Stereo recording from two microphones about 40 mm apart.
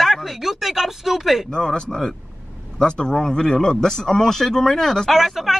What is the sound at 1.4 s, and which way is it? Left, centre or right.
Speech, centre.